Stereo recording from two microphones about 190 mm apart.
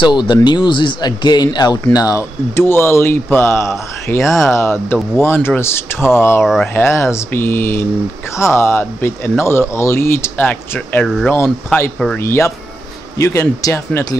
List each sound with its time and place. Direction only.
0.0 s speech: 25° left (ahead or behind)
6.4 s speech: centre (ahead or behind)
6.7 s speech: 15° left (ahead or behind)